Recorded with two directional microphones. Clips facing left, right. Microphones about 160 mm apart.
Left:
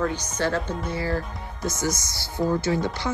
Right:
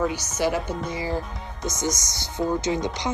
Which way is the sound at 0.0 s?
10° right (ahead or behind).